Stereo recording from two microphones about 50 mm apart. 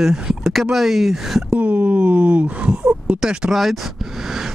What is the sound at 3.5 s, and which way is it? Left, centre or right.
Speech, centre.